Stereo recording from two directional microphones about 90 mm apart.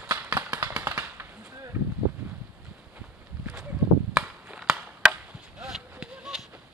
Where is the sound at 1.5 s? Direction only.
30° right (ahead or behind).